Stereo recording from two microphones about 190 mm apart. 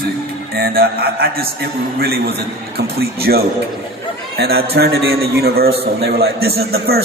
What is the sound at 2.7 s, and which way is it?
A man's voice, 55° right (ahead or behind).